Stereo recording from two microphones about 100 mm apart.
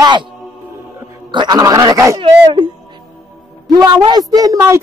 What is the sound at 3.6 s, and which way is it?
A man's voice, 40° right (ahead or behind).